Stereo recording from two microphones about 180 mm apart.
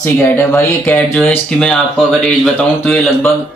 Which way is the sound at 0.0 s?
15° left (ahead or behind).